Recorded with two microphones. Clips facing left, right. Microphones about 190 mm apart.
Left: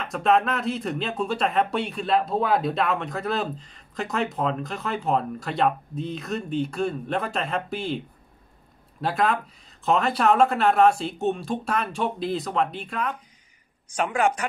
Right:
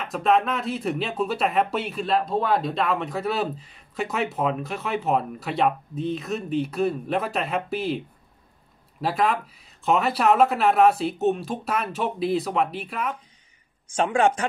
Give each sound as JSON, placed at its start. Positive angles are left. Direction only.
{"t": 0.0, "sound": "speech", "side_deg": 0}
{"t": 9.0, "sound": "speech", "side_deg": 0}
{"t": 13.8, "sound": "speech", "side_deg": -25}